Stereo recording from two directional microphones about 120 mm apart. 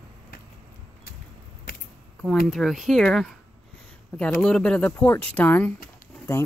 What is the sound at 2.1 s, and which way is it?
Speech, centre (ahead or behind).